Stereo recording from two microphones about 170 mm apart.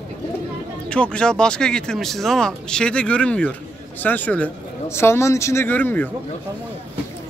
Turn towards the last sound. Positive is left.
turn(degrees=10)  # may be behind; listen again after turning